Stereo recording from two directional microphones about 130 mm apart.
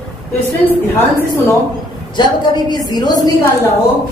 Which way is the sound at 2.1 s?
35° left (ahead or behind).